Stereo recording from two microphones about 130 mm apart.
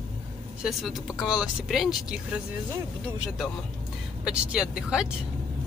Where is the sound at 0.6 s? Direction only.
Centre (ahead or behind).